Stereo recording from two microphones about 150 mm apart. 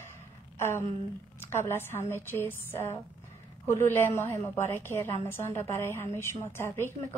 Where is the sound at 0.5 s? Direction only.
15° left (ahead or behind).